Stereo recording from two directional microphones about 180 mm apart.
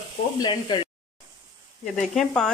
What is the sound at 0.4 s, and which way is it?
Speech, 25° left (ahead or behind).